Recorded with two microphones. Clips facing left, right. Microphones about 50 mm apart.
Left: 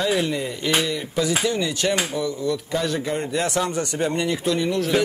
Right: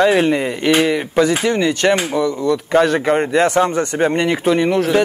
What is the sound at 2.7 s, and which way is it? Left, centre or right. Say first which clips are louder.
Speech: right 10 dB; right.